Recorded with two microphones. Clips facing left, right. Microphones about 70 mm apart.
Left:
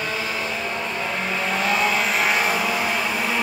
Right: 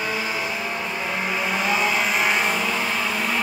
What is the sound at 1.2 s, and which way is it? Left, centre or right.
Vehicle, centre.